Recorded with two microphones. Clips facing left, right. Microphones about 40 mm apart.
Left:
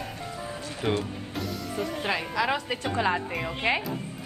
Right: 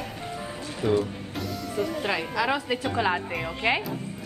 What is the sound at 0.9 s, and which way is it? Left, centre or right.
Speech, left.